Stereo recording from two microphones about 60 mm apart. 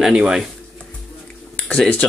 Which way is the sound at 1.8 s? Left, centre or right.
Centre.